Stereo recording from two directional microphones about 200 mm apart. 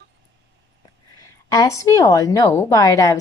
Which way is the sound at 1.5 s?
15° left (ahead or behind).